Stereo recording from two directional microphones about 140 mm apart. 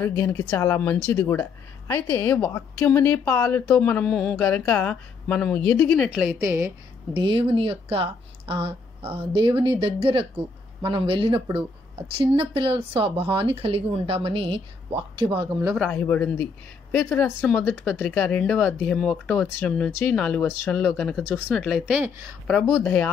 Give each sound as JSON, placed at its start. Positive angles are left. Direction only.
{"t": 0.0, "sound": "speech", "side_deg": 15}
{"t": 6.0, "sound": "a woman's voice", "side_deg": -10}
{"t": 7.2, "sound": "speech", "side_deg": -40}
{"t": 15.9, "sound": "speech", "side_deg": 10}
{"t": 22.5, "sound": "speech", "side_deg": 10}